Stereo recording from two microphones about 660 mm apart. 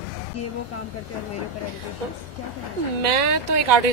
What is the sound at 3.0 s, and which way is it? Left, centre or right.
Speech, right.